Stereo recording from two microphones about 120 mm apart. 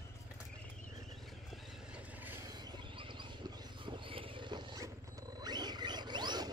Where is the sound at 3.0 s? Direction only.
45° right (ahead or behind).